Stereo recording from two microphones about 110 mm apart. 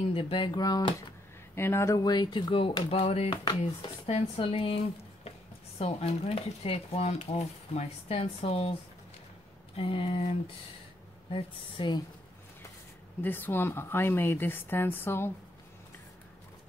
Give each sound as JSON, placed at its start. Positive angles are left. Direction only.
{"t": 0.1, "sound": "speech", "side_deg": 55}
{"t": 0.6, "sound": "speech", "side_deg": 35}
{"t": 1.5, "sound": "speech", "side_deg": 20}
{"t": 2.0, "sound": "speech", "side_deg": 40}
{"t": 2.9, "sound": "speech", "side_deg": 65}
{"t": 9.8, "sound": "speech", "side_deg": 55}
{"t": 13.2, "sound": "speech", "side_deg": 20}